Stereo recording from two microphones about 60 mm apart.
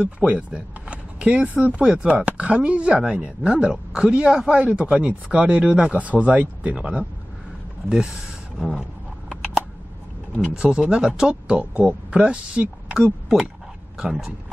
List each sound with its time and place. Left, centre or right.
0.0 s speech: right; by 8.8 s centre
10.5 s speech: centre